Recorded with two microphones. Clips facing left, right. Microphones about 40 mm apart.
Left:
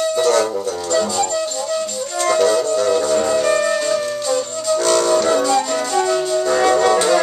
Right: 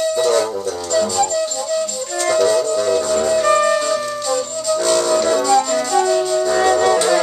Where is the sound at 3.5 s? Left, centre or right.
Centre.